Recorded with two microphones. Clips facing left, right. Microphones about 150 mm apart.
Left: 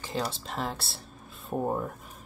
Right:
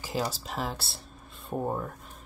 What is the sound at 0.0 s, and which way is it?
Speech, 5° right (ahead or behind).